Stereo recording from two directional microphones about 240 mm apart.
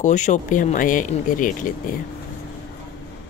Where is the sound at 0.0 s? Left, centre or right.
Left.